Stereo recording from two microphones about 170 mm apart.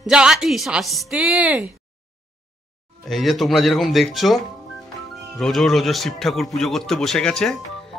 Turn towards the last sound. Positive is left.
turn(degrees=0)  # may be behind; listen again after turning